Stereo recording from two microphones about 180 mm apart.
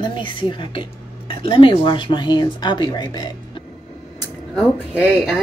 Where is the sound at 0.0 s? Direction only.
25° left (ahead or behind).